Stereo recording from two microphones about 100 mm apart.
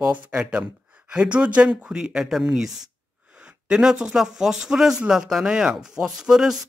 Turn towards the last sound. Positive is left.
turn(degrees=-5)  # may be behind; listen again after turning